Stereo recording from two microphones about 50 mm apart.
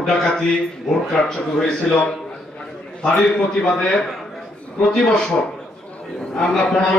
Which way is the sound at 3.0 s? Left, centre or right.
Centre.